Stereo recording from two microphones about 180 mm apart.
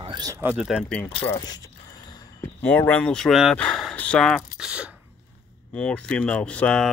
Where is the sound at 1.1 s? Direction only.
30° left (ahead or behind).